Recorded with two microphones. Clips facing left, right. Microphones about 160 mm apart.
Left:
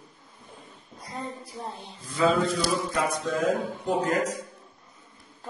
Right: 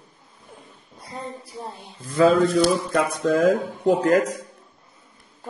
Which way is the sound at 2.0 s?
60° right (ahead or behind).